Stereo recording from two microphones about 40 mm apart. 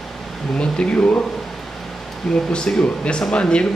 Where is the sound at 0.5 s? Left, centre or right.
Left.